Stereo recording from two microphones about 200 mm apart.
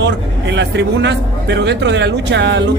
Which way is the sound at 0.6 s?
60° right (ahead or behind).